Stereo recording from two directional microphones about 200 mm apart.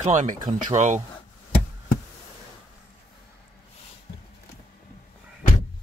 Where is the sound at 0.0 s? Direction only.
35° right (ahead or behind).